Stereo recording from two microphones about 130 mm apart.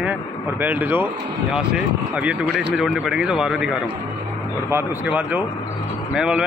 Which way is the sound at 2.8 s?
5° right (ahead or behind).